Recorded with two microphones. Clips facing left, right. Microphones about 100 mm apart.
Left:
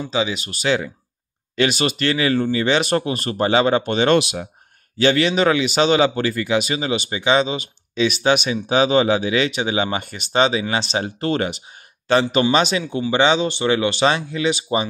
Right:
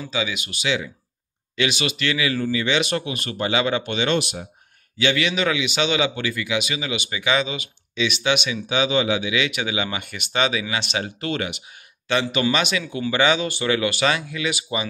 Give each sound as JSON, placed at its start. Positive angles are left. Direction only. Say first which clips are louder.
{"t": 0.0, "sound": "speech", "louder": "left 5 dB", "side_deg": 30}
{"t": 4.2, "sound": "speech", "louder": "left 5 dB", "side_deg": 90}
{"t": 4.9, "sound": "speech", "louder": "left 5 dB", "side_deg": 40}